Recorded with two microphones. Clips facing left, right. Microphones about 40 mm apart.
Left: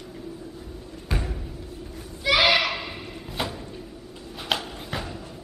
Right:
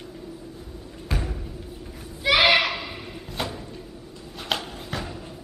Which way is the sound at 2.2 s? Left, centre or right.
Centre.